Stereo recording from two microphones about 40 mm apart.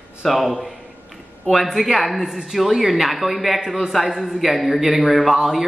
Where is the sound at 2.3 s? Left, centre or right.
Centre.